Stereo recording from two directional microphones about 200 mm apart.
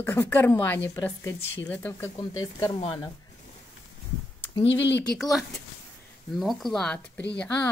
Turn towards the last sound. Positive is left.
turn(degrees=5)  # may be behind; listen again after turning